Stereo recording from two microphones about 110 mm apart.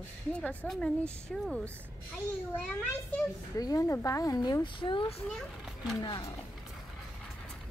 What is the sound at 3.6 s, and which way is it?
A woman's voice, 35° left (ahead or behind).